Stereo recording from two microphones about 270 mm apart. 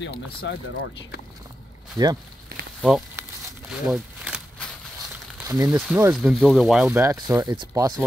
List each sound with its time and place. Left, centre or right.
0.0 s speech: left
2.0 s speech: centre
2.8 s a sound: centre
5.5 s speech: centre